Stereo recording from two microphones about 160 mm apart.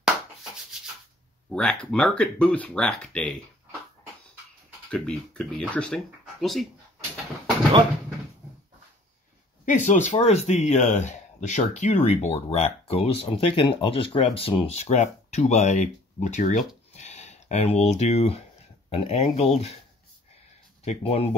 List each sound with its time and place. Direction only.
1.5 s speech: 5° left (ahead or behind)
4.9 s speech: 5° left (ahead or behind)
9.7 s speech: 50° left (ahead or behind)
20.8 s speech: 40° left (ahead or behind)